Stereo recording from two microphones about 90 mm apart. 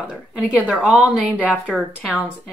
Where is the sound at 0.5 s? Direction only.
15° right (ahead or behind).